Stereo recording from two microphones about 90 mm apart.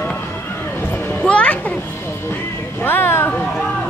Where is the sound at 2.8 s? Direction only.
25° left (ahead or behind).